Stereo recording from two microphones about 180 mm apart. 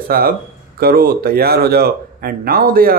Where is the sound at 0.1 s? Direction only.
55° right (ahead or behind).